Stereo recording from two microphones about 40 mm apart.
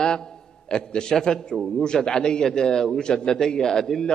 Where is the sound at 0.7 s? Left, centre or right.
Centre.